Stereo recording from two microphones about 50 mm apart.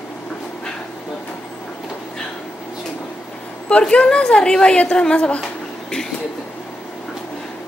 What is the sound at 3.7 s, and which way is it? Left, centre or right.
A woman's voice, left.